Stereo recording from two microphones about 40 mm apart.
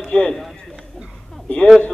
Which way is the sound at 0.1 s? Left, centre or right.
Left.